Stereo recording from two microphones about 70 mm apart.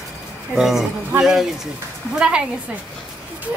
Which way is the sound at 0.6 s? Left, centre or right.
Centre.